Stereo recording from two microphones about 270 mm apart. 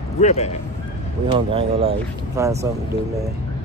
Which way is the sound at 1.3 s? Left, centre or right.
Centre.